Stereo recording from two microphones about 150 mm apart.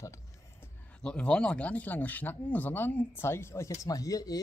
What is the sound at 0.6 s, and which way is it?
Speech, 5° left (ahead or behind).